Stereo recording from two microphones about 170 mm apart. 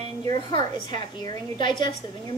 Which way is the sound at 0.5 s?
25° left (ahead or behind).